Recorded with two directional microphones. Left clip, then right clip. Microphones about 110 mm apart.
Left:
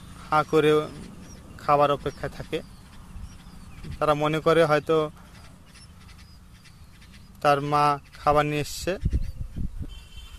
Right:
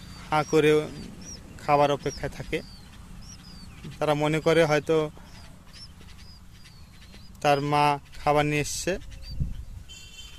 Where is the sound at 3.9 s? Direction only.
25° right (ahead or behind).